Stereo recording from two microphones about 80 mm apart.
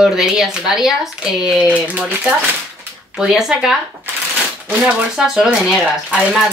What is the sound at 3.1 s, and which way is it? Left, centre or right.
Speech, centre.